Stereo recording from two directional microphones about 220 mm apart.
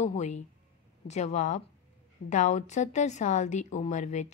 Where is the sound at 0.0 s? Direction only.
30° left (ahead or behind).